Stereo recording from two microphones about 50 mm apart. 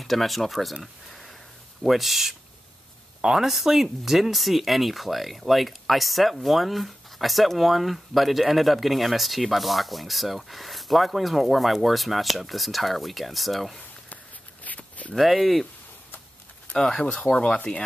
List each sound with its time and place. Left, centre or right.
0.0 s speech: centre
1.8 s speech: centre
14.0 s walk: left
15.1 s speech: centre
16.7 s speech: centre